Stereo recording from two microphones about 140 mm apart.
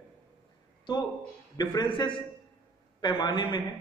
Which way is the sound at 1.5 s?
30° left (ahead or behind).